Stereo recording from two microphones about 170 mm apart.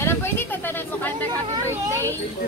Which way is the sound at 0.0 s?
15° left (ahead or behind).